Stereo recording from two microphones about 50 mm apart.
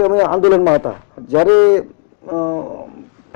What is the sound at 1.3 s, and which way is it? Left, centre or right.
Speech, centre.